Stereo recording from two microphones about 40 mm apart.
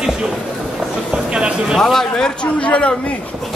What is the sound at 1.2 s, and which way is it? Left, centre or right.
Speech, right.